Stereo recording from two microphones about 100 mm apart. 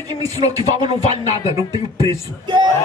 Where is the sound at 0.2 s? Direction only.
40° right (ahead or behind).